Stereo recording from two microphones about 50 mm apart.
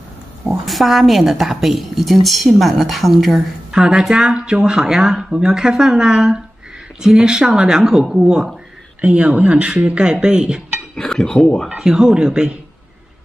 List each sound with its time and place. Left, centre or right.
0.7 s a woman's voice: centre
9.0 s speech: right
11.0 s speech: centre
11.7 s speech: centre